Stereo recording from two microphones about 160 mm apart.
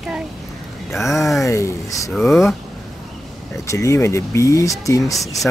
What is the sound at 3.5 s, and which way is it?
Speech, 20° left (ahead or behind).